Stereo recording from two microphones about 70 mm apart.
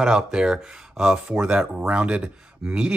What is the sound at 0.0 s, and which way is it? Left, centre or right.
Speech, centre.